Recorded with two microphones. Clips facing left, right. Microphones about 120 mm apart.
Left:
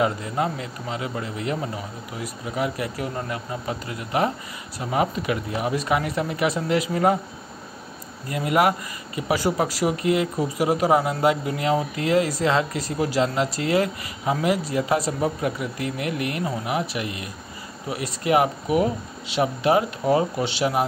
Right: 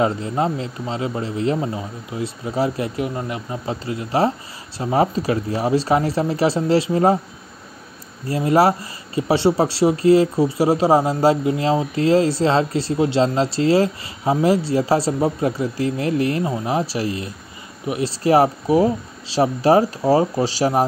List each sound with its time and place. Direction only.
0.0 s speech: 30° right (ahead or behind)
8.3 s speech: 30° right (ahead or behind)